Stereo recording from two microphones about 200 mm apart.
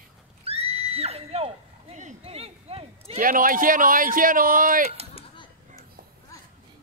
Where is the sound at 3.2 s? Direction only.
45° right (ahead or behind).